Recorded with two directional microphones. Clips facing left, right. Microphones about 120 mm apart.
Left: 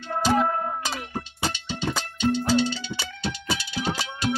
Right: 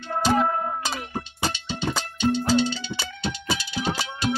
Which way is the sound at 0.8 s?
30° right (ahead or behind).